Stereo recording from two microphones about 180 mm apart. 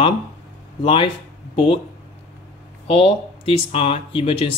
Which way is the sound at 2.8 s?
30° left (ahead or behind).